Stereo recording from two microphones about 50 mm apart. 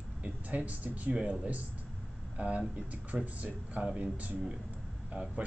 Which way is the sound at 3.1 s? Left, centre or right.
Centre.